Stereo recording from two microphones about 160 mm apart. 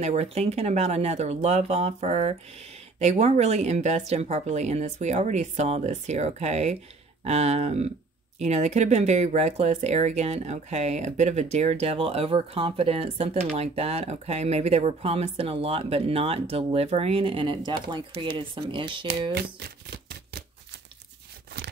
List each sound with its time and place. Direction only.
0.0 s speech: 45° right (ahead or behind)
19.3 s shuffling cards: 90° right
21.5 s a sound: 90° right